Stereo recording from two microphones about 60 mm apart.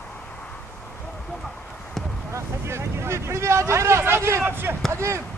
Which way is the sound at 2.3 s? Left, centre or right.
Right.